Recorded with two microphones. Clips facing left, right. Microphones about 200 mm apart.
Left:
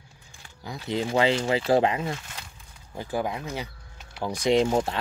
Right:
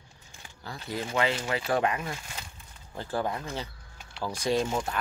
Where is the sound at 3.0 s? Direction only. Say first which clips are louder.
Left 2 dB; 15° left (ahead or behind).